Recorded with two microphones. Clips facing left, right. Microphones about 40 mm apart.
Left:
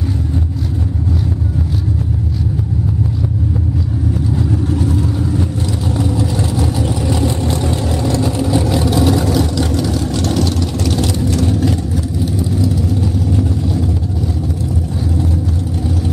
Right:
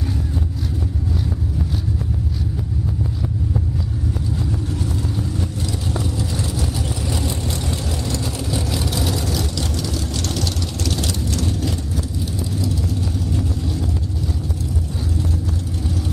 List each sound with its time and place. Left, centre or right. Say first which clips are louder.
6.6 s vehicle: left 7 dB; left